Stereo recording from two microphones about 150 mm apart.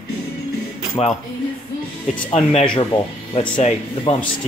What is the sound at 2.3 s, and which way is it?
Speech, 40° left (ahead or behind).